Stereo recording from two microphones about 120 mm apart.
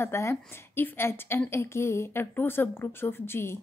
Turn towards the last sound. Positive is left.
turn(degrees=20)  # may be behind; listen again after turning